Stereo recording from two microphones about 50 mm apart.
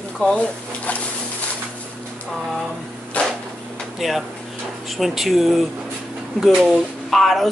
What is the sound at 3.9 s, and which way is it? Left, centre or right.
Speech, centre.